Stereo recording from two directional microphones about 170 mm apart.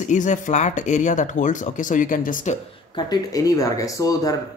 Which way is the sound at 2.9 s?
20° left (ahead or behind).